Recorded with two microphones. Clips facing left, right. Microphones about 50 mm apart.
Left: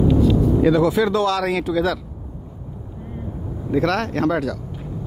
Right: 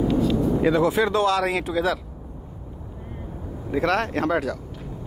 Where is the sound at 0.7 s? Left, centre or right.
Right.